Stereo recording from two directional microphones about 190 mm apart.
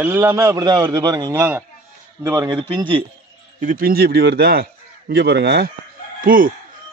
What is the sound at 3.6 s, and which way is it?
Speech, 50° right (ahead or behind).